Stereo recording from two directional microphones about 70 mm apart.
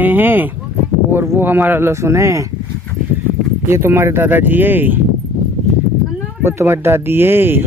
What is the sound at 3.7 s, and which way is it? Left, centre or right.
Speech, right.